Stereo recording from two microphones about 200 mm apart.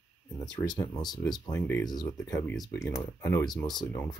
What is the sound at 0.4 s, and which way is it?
Speech, 15° left (ahead or behind).